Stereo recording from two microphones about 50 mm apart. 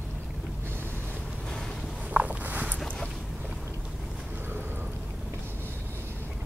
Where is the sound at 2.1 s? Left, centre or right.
Right.